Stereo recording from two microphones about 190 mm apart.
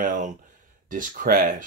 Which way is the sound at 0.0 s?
40° right (ahead or behind).